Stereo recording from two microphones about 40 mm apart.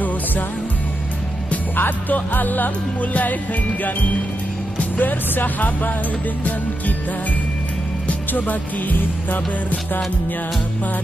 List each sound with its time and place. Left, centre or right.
1.8 s music: left
4.7 s speech: left
8.3 s music: left